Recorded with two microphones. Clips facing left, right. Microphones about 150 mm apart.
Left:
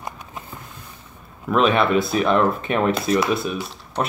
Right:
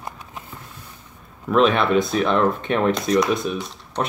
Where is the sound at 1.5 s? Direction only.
5° left (ahead or behind).